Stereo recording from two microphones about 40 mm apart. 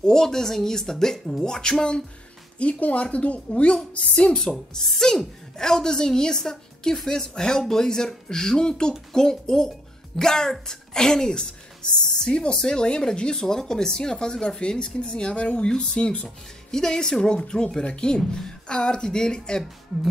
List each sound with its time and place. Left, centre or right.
0.0 s speech: centre
2.6 s a woman's voice: left
4.4 s speech: centre